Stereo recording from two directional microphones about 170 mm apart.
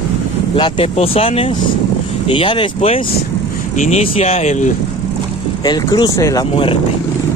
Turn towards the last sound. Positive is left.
turn(degrees=20)  # may be behind; listen again after turning